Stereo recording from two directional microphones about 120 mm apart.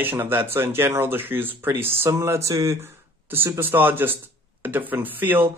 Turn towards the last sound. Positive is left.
turn(degrees=-15)  # may be behind; listen again after turning